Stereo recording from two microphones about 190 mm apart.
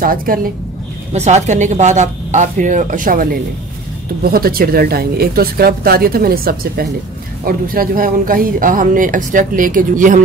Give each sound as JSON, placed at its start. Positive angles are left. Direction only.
{"t": 0.0, "sound": "speech", "side_deg": -50}
{"t": 1.1, "sound": "a woman's voice", "side_deg": -35}